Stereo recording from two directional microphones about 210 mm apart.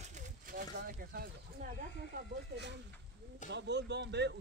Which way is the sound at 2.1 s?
55° right (ahead or behind).